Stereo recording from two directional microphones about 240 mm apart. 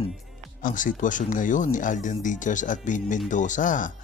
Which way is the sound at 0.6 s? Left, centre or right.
Left.